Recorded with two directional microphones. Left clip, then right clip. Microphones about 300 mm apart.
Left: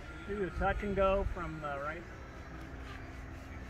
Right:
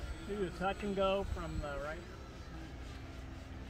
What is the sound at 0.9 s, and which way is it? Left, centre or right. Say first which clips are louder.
Speech: left 3 dB; left.